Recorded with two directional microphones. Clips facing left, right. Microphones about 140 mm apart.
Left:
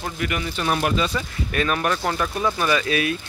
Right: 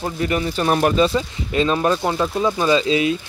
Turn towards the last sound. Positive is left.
turn(degrees=-20)  # may be behind; listen again after turning